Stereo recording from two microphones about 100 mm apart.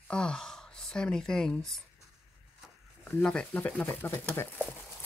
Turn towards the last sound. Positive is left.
turn(degrees=20)  # may be behind; listen again after turning